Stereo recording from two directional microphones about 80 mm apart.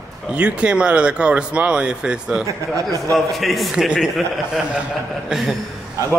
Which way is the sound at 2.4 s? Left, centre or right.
Right.